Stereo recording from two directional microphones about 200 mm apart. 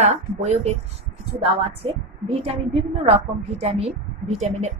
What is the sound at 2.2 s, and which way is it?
A woman's voice, 30° right (ahead or behind).